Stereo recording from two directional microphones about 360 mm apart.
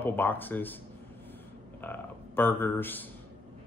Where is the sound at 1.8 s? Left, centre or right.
Centre.